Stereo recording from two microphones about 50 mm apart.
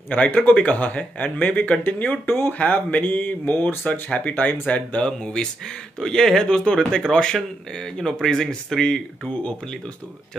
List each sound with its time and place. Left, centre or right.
0.1 s speech: left
2.2 s speech: left
2.6 s speech: left
5.0 s speech: centre